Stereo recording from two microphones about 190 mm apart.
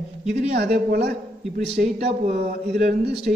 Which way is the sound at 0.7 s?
60° right (ahead or behind).